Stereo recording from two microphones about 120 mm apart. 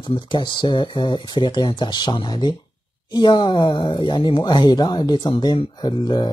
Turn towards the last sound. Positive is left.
turn(degrees=40)  # may be behind; listen again after turning